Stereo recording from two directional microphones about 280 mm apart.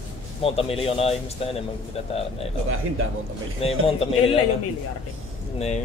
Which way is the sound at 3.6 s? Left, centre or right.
Left.